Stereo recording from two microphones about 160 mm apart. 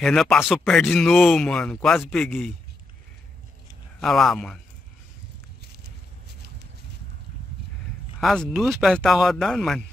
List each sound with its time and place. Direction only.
0.0 s speech: 5° left (ahead or behind)
4.0 s speech: centre (ahead or behind)
5.6 s a sound: 90° right
8.2 s speech: centre (ahead or behind)